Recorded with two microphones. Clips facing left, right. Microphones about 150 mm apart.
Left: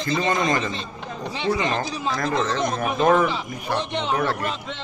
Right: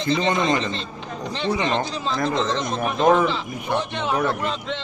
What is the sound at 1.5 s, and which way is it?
Speech, 25° right (ahead or behind).